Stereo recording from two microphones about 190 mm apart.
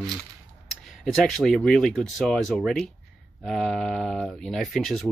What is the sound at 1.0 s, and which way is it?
Speech, centre (ahead or behind).